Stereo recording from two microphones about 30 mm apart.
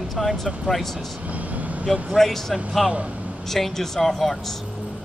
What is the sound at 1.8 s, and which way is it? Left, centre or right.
Speech, centre.